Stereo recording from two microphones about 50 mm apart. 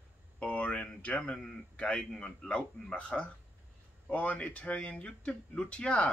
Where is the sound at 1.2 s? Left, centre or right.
Centre.